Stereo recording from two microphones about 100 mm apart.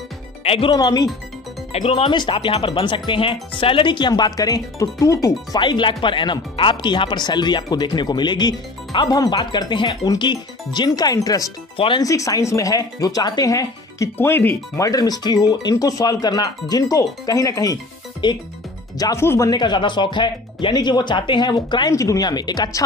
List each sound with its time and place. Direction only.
0.4 s music: 70° left (ahead or behind)
0.7 s speech: 45° left (ahead or behind)
1.7 s speech: 85° left
2.1 s speech: 55° left (ahead or behind)
4.1 s speech: 40° left (ahead or behind)
5.6 s speech: 55° left (ahead or behind); by 11.5 s 35° left (ahead or behind)
11.7 s speech: 65° left (ahead or behind)
12.0 s speech: 35° left (ahead or behind)
14.1 s speech: 20° left (ahead or behind)
14.8 s speech: 40° left (ahead or behind)
18.2 s speech: 50° left (ahead or behind)
19.1 s speech: 30° left (ahead or behind)
19.5 s speech: 50° left (ahead or behind)
21.9 s speech: 35° left (ahead or behind)